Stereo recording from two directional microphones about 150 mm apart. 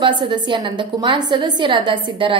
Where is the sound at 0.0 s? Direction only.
30° right (ahead or behind).